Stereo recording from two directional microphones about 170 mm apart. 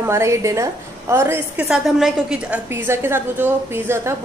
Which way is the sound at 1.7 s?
5° right (ahead or behind).